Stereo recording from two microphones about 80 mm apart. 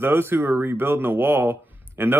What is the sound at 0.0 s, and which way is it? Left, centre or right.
Speech, right.